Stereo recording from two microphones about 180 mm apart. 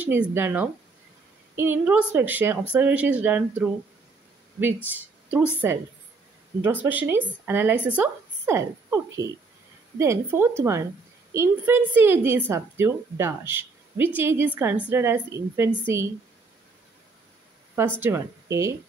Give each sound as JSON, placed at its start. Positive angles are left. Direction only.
{"t": 0.0, "sound": "a woman's voice", "side_deg": -15}
{"t": 4.9, "sound": "speech", "side_deg": -10}
{"t": 6.6, "sound": "a woman's voice", "side_deg": -10}
{"t": 18.0, "sound": "a woman's voice", "side_deg": -15}